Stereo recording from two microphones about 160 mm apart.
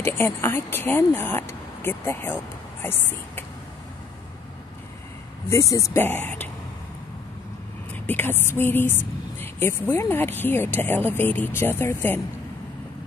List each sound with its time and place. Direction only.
0.0 s speech: 15° left (ahead or behind)
5.5 s speech: 20° left (ahead or behind)
7.9 s speech: 10° left (ahead or behind)